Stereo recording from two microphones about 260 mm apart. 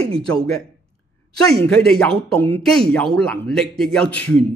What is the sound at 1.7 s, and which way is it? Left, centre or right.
Speech, centre.